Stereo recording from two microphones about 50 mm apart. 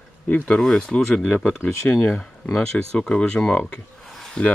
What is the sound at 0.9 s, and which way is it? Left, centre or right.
Speech, left.